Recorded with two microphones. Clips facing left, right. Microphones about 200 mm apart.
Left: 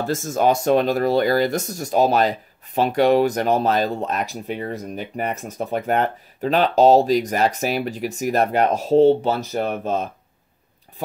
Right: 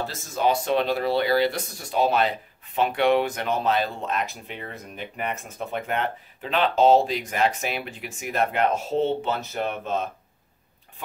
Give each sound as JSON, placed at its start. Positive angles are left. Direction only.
{"t": 0.0, "sound": "speech", "side_deg": 50}